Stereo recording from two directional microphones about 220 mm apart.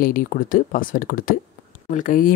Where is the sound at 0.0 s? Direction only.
40° left (ahead or behind).